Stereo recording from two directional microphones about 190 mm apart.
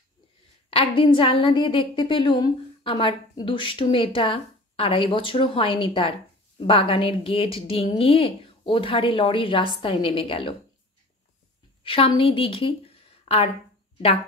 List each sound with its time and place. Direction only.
0.7 s a woman's voice: 30° left (ahead or behind)
11.8 s a woman's voice: 25° left (ahead or behind)